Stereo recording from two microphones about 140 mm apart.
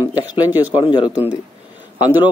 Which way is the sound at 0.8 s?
35° left (ahead or behind).